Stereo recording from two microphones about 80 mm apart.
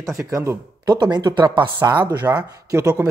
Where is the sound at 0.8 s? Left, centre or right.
Right.